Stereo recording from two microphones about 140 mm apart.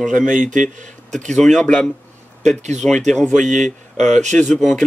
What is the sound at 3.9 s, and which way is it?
Speech, 60° right (ahead or behind).